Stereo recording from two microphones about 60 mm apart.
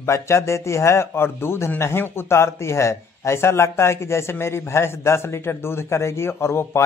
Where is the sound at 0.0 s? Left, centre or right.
Left.